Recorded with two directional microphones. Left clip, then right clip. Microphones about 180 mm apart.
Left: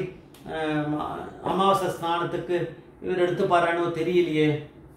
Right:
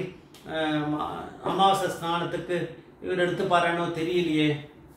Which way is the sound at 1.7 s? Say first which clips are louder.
Left 2 dB; 10° left (ahead or behind).